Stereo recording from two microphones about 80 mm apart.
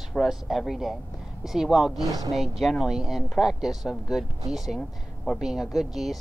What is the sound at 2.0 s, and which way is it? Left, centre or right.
Speech, right.